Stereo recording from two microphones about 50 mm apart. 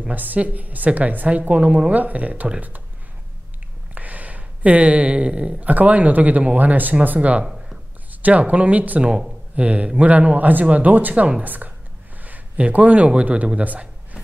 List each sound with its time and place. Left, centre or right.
0.1 s a woman's voice: right
3.9 s speech: right
7.4 s a sound: centre
8.1 s a woman's voice: right